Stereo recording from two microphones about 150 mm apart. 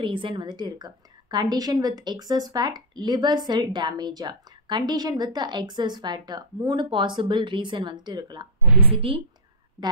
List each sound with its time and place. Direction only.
0.0 s a woman's voice: 35° right (ahead or behind)
8.6 s a woman's voice: 10° right (ahead or behind)
8.9 s a woman's voice: 40° right (ahead or behind)